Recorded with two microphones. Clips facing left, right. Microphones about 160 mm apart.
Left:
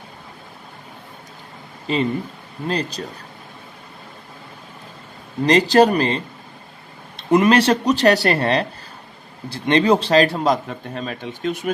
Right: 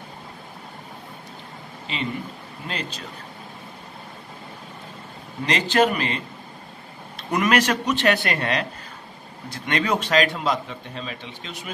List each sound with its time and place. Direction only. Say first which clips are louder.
1.9 s speech: left 8 dB; 40° left (ahead or behind)
5.4 s speech: left 7 dB; 35° left (ahead or behind)
7.2 s speech: left 6 dB; 25° left (ahead or behind); by 11.7 s 50° left (ahead or behind)